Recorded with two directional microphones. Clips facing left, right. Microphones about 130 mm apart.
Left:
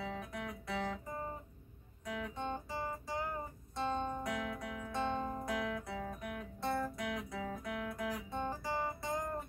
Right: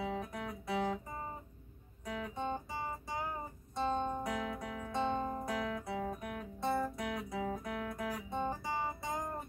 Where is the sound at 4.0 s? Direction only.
15° right (ahead or behind).